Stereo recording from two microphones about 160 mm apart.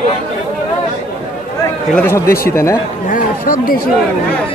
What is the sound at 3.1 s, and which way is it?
Speech, 60° left (ahead or behind).